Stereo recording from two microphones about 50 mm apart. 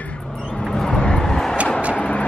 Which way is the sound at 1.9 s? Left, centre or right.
Left.